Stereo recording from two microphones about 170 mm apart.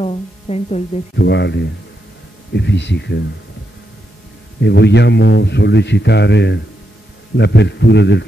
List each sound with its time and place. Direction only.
0.0 s speech: 35° left (ahead or behind)
1.1 s a man's voice: 90° left
4.6 s a man's voice: 90° left